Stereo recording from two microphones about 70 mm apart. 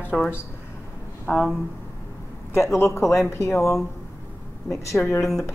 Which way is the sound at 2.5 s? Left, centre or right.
Left.